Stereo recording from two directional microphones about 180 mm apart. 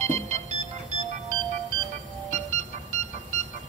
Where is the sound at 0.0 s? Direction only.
40° right (ahead or behind).